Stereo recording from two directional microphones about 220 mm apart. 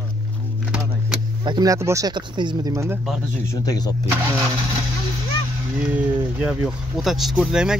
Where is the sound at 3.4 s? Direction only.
15° left (ahead or behind).